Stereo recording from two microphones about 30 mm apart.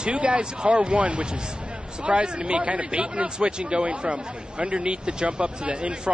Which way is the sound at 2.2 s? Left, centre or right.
Right.